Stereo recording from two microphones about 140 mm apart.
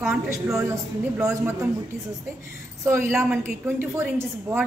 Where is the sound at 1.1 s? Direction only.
20° right (ahead or behind).